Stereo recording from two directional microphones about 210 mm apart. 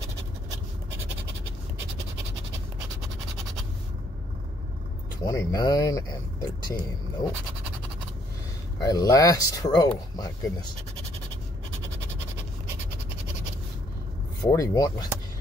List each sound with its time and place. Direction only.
5.2 s speech: 15° left (ahead or behind)
8.8 s speech: 15° left (ahead or behind)
14.4 s speech: 15° left (ahead or behind)